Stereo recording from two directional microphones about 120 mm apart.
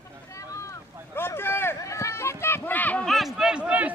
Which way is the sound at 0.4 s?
25° left (ahead or behind).